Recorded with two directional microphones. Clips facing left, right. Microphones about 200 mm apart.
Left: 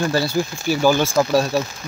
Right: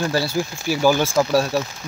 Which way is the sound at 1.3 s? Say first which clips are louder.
Left 1 dB; 15° left (ahead or behind).